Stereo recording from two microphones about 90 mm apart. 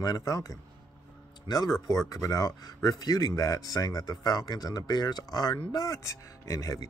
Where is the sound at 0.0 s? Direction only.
40° left (ahead or behind).